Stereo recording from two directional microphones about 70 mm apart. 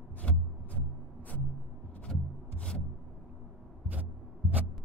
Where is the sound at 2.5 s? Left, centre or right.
Centre.